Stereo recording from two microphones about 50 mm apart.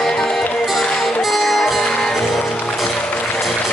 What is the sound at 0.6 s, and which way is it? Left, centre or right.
Music, centre.